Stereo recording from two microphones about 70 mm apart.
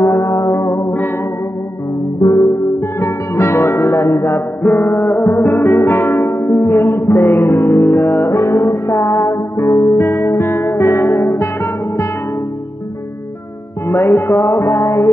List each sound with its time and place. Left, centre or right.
0.0 s music: left
2.2 s music: left
4.6 s music: left
13.8 s music: left